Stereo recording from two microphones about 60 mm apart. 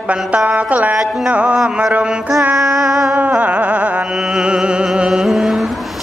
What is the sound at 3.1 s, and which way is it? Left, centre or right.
Music, right.